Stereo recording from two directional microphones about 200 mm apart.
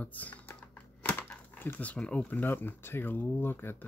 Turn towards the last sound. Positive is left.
turn(degrees=10)  # may be behind; listen again after turning